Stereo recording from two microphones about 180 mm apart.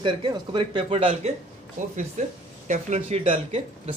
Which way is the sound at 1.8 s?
45° right (ahead or behind).